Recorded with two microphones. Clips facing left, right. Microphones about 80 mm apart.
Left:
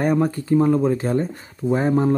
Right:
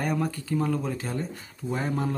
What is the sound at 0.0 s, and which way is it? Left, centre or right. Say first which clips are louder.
Speech: left 9 dB; left.